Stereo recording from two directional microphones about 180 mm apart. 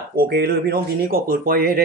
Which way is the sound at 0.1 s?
60° right (ahead or behind).